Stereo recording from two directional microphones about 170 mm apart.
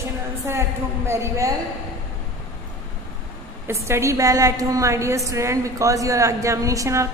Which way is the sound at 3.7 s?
15° right (ahead or behind).